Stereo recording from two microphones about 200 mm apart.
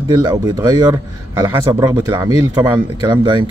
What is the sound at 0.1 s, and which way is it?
A man's voice, 20° right (ahead or behind).